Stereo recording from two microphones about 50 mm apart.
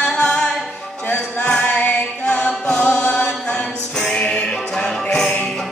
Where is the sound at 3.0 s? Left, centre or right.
Left.